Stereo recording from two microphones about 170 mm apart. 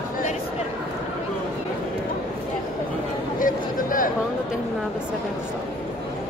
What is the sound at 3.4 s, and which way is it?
Speech, 55° left (ahead or behind).